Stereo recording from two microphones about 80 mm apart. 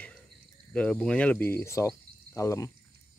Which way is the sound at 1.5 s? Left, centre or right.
Left.